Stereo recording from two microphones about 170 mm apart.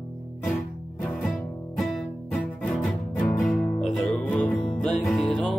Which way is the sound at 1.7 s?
5° left (ahead or behind).